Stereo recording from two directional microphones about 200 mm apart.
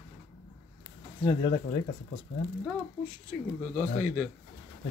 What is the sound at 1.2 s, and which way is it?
Speech, 25° left (ahead or behind).